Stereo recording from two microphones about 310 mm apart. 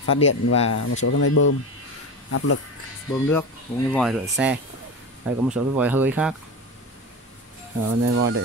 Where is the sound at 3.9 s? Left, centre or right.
Centre.